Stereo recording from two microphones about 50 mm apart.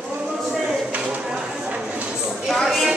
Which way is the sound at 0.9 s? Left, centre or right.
Right.